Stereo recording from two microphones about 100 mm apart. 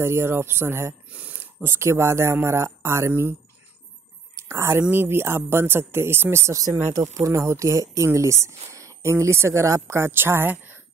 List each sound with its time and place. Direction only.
0.0 s speech: 25° right (ahead or behind)
1.1 s speech: 15° right (ahead or behind)
4.4 s speech: 30° right (ahead or behind)